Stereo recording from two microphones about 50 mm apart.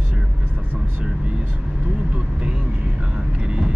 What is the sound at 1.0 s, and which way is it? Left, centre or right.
Vehicle, centre.